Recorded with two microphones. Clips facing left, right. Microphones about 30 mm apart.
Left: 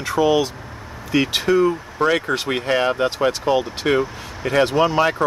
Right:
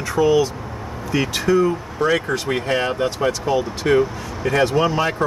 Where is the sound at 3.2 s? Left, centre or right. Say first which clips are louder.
Left 1 dB; left.